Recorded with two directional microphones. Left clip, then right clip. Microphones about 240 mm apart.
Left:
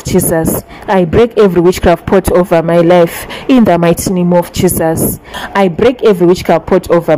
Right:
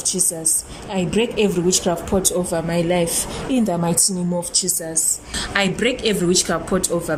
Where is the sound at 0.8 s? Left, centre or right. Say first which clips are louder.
Left 13 dB; left.